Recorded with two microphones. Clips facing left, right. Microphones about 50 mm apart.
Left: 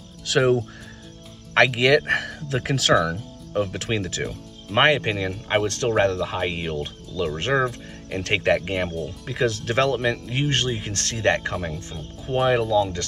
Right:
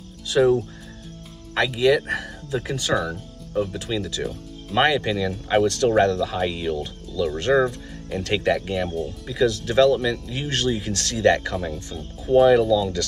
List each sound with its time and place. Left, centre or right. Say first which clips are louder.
0.2 s music: right 2 dB; left
1.5 s speech: left 2 dB; left
4.7 s speech: left 1 dB; left
11.5 s speech: right 1 dB; centre